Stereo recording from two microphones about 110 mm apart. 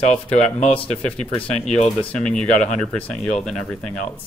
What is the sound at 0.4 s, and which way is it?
Speech, 90° left.